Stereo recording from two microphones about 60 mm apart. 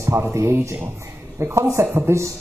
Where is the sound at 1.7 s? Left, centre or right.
Right.